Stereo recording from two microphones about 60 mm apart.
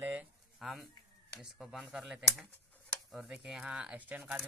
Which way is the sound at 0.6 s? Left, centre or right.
Centre.